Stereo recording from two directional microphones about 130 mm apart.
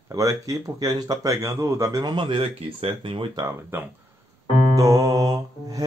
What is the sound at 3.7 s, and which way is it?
Speech, 15° right (ahead or behind).